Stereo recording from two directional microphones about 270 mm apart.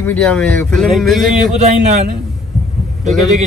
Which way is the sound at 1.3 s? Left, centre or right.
Right.